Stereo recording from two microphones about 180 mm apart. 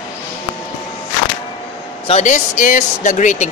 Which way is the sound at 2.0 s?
40° left (ahead or behind).